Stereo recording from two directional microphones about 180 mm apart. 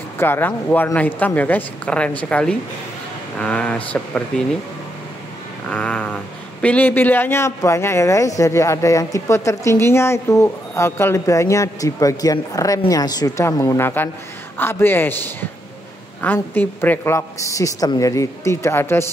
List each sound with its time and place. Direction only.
0.2 s speech: 10° left (ahead or behind)
5.7 s speech: 5° left (ahead or behind)